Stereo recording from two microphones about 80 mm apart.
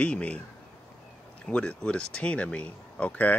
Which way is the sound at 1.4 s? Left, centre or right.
Centre.